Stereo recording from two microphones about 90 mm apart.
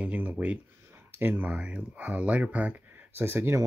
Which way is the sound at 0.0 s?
15° right (ahead or behind).